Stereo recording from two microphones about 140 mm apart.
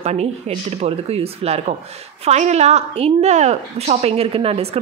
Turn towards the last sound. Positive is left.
turn(degrees=-45)  # may be behind; listen again after turning